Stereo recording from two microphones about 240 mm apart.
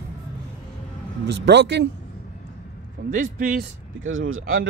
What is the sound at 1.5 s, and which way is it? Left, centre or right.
Speech, right.